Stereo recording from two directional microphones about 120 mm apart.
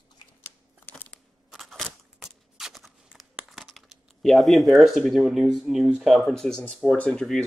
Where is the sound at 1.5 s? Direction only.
Centre (ahead or behind).